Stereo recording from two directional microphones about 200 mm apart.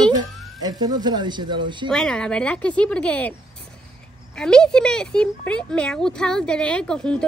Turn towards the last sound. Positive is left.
turn(degrees=5)  # may be behind; listen again after turning